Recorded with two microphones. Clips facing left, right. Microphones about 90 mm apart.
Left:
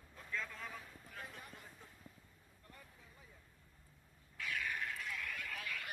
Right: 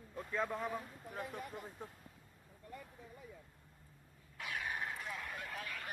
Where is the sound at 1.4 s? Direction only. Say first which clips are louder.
Right 9 dB; 45° right (ahead or behind).